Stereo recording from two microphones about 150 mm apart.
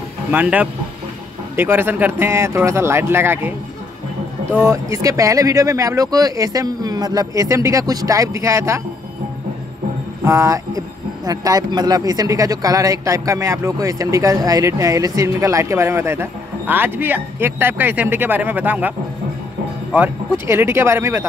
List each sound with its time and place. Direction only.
0.3 s speech: 10° right (ahead or behind)
4.6 s speech: 20° right (ahead or behind)
10.2 s speech: 20° right (ahead or behind)